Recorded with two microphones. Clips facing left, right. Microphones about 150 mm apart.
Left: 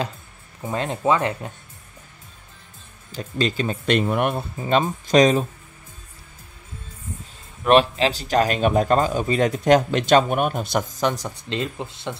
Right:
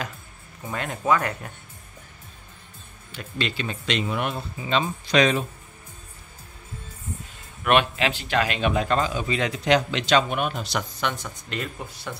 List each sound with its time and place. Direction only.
0.7 s speech: 30° left (ahead or behind)
3.1 s speech: 40° left (ahead or behind)
7.6 s speech: 30° left (ahead or behind)